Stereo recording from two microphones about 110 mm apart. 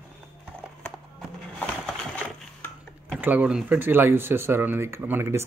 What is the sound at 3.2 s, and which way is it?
Speech, 15° right (ahead or behind).